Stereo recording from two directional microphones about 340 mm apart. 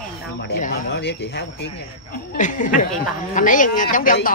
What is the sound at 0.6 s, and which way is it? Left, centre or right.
Speech, left.